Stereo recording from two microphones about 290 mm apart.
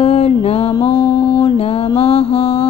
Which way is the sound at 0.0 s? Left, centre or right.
Left.